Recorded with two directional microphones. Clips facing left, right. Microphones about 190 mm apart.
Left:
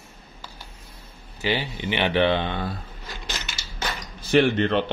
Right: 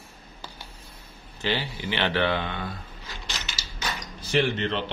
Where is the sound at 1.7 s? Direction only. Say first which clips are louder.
Left 4 dB; 20° left (ahead or behind).